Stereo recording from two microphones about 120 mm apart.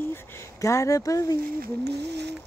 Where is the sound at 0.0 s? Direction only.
20° left (ahead or behind).